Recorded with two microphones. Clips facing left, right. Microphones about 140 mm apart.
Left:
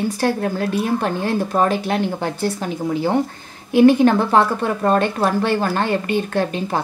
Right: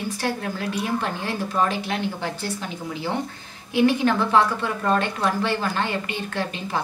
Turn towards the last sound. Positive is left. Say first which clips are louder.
# left 5 dB
turn(degrees=40)  # may be behind; listen again after turning